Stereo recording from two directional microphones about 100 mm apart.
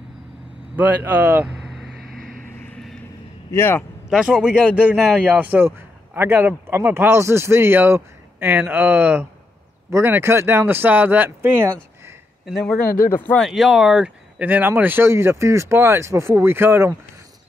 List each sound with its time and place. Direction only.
0.7 s a man's voice: 15° right (ahead or behind)
1.6 s vehicle: centre (ahead or behind)
3.5 s a man's voice: 20° left (ahead or behind)
4.1 s a man's voice: 10° right (ahead or behind); by 11.8 s 25° right (ahead or behind)
12.6 s speech: 15° left (ahead or behind)
13.4 s speech: 5° right (ahead or behind); by 16.9 s 25° right (ahead or behind)